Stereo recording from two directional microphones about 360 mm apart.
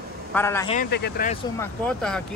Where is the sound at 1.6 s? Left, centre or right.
Centre.